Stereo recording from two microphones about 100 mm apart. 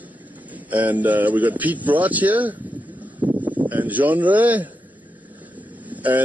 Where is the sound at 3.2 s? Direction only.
15° right (ahead or behind).